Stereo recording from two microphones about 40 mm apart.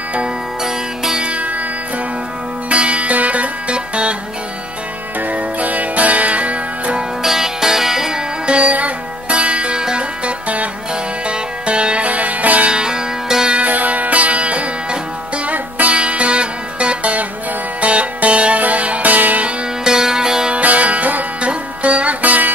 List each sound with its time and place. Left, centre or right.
0.7 s music: centre
1.2 s music: right
2.7 s music: right
5.2 s music: right
7.2 s music: centre
8.5 s music: right
12.7 s music: centre
13.6 s music: right
19.8 s music: centre
20.5 s music: right
21.4 s music: right